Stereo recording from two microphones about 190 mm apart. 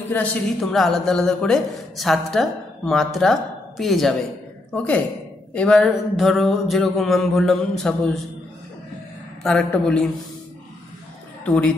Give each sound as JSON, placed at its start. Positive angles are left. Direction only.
{"t": 0.1, "sound": "a man's voice", "side_deg": 5}
{"t": 9.4, "sound": "a man's voice", "side_deg": 0}
{"t": 11.4, "sound": "a man's voice", "side_deg": 5}